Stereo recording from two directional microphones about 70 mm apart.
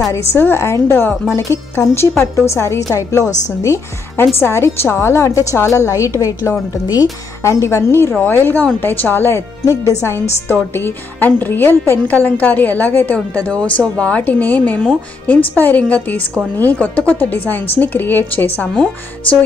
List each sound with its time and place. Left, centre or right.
0.1 s a woman's voice: left
4.2 s a woman's voice: left
5.2 s speech: left
6.7 s speech: left
7.4 s a woman's voice: left
9.7 s a woman's voice: left